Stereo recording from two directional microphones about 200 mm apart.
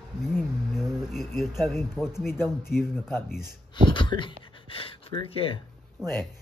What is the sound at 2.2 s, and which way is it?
Speech, 10° left (ahead or behind).